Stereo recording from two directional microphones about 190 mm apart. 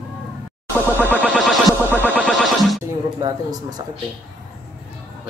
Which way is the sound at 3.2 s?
20° right (ahead or behind).